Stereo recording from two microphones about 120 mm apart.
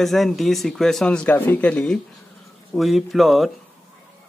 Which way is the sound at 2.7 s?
Centre (ahead or behind).